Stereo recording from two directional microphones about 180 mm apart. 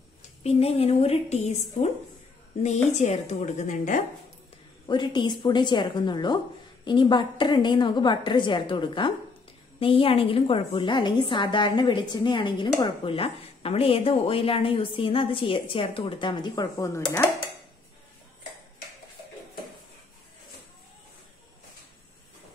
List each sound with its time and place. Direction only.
0.4 s a woman's voice: 35° left (ahead or behind)
4.8 s a woman's voice: 25° left (ahead or behind)
17.0 s dishes: 10° left (ahead or behind)